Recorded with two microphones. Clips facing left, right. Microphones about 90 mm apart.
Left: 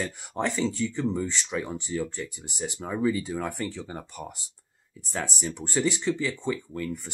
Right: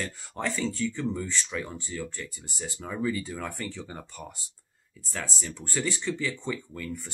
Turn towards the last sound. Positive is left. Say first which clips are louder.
# left 4 dB
turn(degrees=10)  # may be behind; listen again after turning